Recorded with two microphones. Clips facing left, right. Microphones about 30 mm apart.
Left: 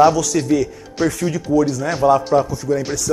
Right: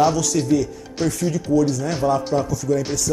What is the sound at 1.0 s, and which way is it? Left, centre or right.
Speech, centre.